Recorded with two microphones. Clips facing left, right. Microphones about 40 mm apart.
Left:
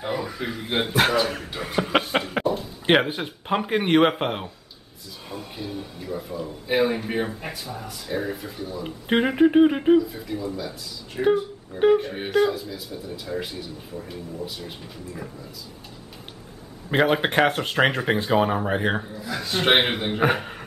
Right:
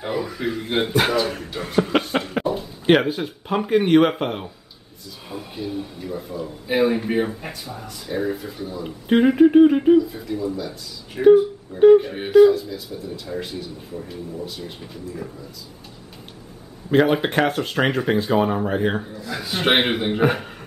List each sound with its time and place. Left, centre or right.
0.0 s speech: centre
1.9 s chuckle: centre
2.4 s a sound: centre
3.2 s speech: centre
5.3 s speech: centre
8.8 s speech: centre
16.9 s speech: centre
19.0 s speech: centre